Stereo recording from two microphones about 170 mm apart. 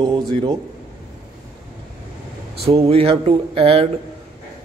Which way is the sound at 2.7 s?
35° right (ahead or behind).